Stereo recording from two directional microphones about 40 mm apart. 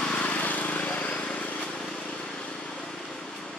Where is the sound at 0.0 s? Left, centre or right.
Left.